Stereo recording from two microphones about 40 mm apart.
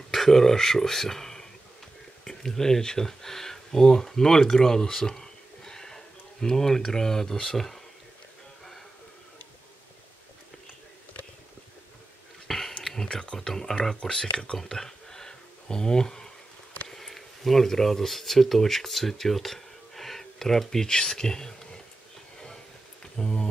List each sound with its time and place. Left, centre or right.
0.1 s speech: centre
12.4 s a sound: centre
13.4 s speech: centre
14.6 s a sound: centre
16.9 s speech: centre
23.1 s speech: centre